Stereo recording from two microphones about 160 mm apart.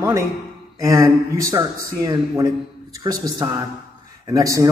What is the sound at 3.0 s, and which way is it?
A man's voice, 25° right (ahead or behind).